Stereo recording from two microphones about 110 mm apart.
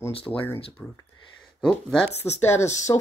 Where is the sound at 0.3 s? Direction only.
10° left (ahead or behind).